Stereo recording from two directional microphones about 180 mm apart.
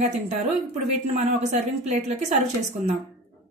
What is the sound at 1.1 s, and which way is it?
Speech, 40° right (ahead or behind).